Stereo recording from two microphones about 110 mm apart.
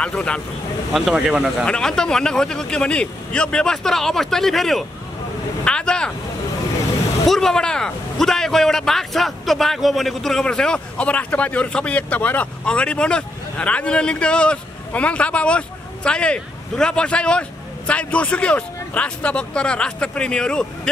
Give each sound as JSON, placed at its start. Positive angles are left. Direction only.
{"t": 0.0, "sound": "speech", "side_deg": 10}
{"t": 0.9, "sound": "speech", "side_deg": -5}
{"t": 1.7, "sound": "speech", "side_deg": 5}
{"t": 7.2, "sound": "speech", "side_deg": 5}